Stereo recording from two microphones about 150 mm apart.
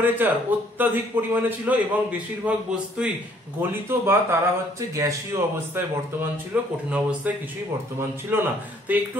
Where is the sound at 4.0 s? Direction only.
15° right (ahead or behind).